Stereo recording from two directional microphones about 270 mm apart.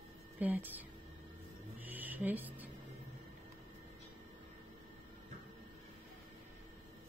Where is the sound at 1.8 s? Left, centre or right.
Centre.